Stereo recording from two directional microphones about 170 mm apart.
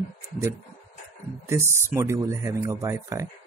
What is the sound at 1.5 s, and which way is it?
Speech, 15° right (ahead or behind).